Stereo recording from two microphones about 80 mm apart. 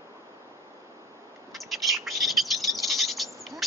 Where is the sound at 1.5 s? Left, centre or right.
Centre.